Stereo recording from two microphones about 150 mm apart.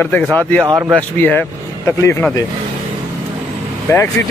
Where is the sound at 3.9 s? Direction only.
15° left (ahead or behind).